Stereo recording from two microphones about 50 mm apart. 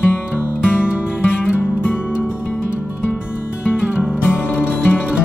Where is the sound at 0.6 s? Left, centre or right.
Left.